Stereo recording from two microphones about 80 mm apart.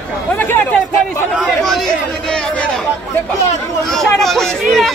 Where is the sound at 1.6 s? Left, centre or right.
Centre.